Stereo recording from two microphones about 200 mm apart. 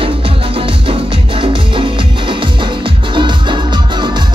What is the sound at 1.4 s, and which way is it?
Music, 25° right (ahead or behind).